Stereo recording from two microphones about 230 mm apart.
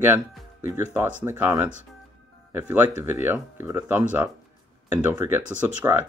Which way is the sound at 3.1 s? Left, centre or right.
Centre.